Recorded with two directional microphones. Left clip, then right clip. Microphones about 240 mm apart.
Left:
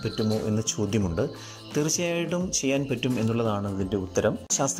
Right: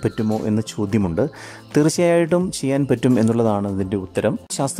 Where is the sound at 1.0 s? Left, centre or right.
Right.